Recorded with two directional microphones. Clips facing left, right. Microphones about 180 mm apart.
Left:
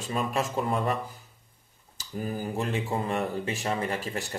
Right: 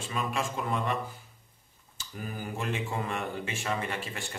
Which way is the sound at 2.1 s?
35° left (ahead or behind).